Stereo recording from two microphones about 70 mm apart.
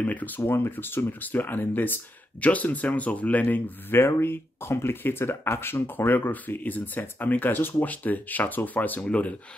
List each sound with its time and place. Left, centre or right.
0.0 s speech: left